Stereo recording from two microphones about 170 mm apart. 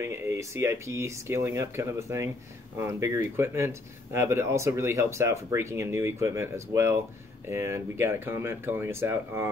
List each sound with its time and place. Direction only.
0.0 s speech: 15° right (ahead or behind)